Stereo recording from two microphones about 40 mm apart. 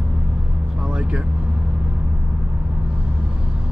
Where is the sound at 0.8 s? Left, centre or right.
Right.